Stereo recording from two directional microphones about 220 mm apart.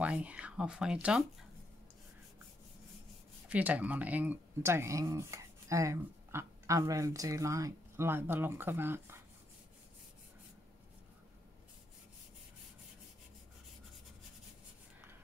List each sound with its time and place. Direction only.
0.0 s speech: 5° right (ahead or behind)
3.4 s speech: 5° right (ahead or behind)